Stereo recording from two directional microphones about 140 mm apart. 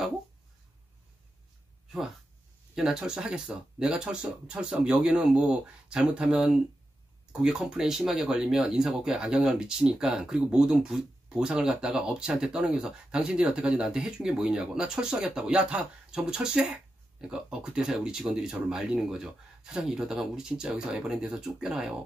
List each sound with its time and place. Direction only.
2.7 s speech: 5° right (ahead or behind)